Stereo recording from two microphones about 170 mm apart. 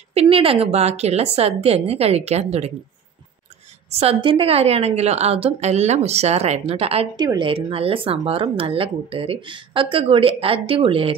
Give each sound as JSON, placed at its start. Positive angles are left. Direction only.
{"t": 0.1, "sound": "speech", "side_deg": -35}
{"t": 3.9, "sound": "speech", "side_deg": -35}
{"t": 7.2, "sound": "speech", "side_deg": -25}